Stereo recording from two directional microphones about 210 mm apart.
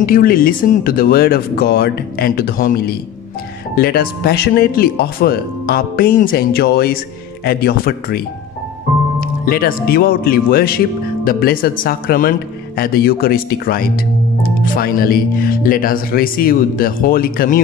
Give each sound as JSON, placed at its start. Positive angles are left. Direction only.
{"t": 0.0, "sound": "speech", "side_deg": 45}
{"t": 9.2, "sound": "speech", "side_deg": 45}